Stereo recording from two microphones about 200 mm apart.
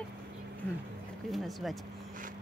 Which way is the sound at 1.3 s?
Centre (ahead or behind).